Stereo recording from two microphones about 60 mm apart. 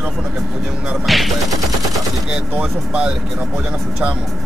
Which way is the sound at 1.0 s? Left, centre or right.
Centre.